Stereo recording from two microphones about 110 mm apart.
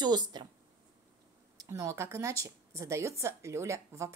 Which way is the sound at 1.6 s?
25° right (ahead or behind).